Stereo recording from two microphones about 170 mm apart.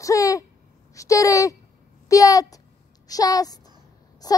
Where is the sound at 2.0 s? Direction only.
20° left (ahead or behind).